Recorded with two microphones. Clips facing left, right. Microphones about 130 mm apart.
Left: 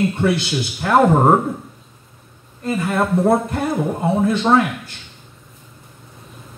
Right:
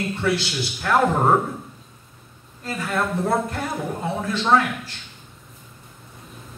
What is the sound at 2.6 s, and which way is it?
Speech, 25° left (ahead or behind).